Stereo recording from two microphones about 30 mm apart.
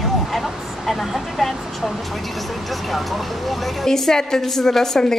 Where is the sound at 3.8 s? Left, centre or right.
Centre.